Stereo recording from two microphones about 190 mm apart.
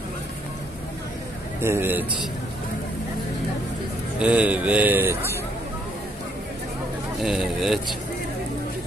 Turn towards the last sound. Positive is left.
turn(degrees=0)  # may be behind; listen again after turning